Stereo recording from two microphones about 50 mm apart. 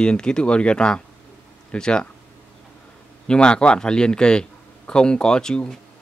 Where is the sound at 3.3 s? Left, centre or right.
Centre.